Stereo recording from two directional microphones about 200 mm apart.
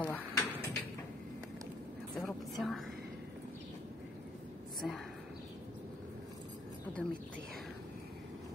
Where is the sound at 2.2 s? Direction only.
Centre (ahead or behind).